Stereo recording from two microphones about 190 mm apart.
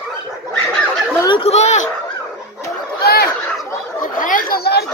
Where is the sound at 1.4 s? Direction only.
35° left (ahead or behind).